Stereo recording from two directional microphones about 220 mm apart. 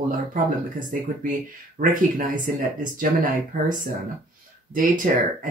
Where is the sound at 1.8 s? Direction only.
35° right (ahead or behind).